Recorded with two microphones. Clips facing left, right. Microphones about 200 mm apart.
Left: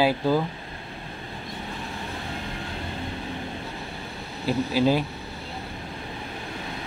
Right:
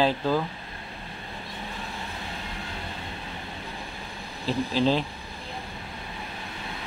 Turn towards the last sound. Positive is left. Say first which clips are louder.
# left 2 dB
turn(degrees=10)  # may be behind; listen again after turning